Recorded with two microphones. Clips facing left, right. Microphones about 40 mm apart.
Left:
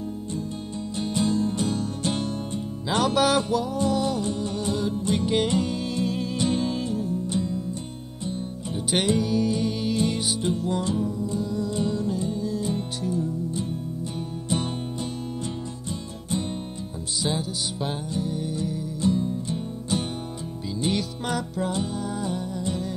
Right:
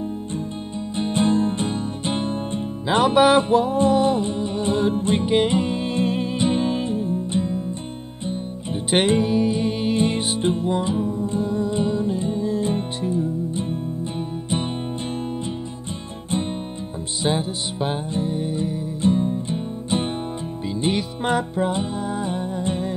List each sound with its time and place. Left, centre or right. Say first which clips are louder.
0.9 s music: right 5 dB; right
5.2 s music: right 3 dB; right
17.2 s music: right 5 dB; right